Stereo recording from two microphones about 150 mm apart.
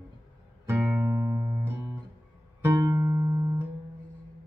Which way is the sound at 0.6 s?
15° right (ahead or behind).